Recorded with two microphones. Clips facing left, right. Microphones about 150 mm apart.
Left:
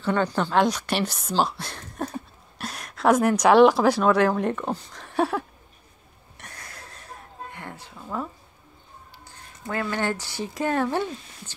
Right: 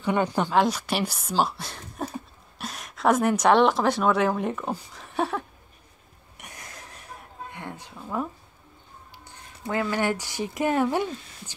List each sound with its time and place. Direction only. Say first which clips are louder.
0.0 s speech: even; 15° right (ahead or behind)
0.6 s speech: left 1 dB; 5° right (ahead or behind)
6.3 s a sound: even; 15° right (ahead or behind)
7.5 s music: right 1 dB; 15° right (ahead or behind)
7.9 s a sound: right 1 dB; 15° right (ahead or behind)
9.2 s speech: right 3 dB; 20° right (ahead or behind)